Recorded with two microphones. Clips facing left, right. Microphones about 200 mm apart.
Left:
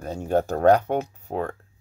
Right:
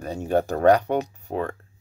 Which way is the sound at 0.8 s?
15° right (ahead or behind).